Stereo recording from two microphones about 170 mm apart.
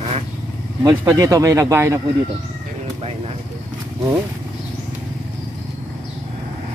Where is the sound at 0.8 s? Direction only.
20° right (ahead or behind).